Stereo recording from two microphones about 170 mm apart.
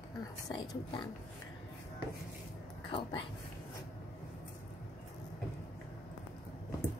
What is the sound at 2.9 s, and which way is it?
Speech, 30° left (ahead or behind).